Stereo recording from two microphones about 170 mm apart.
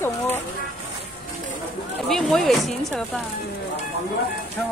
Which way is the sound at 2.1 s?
Centre (ahead or behind).